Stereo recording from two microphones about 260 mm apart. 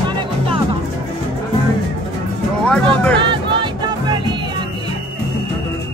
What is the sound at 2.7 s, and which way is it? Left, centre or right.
Music, centre.